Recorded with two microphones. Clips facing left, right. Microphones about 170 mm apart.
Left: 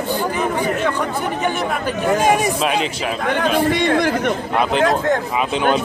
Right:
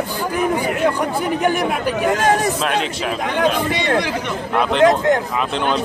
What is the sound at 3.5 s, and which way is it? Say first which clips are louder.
Speech: left 3 dB; 50° left (ahead or behind).